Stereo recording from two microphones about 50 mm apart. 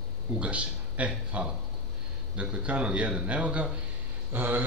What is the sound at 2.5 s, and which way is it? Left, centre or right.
A man's voice, right.